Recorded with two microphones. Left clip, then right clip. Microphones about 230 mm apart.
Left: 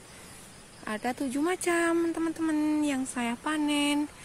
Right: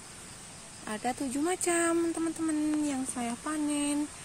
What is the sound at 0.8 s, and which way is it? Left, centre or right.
Speech, centre.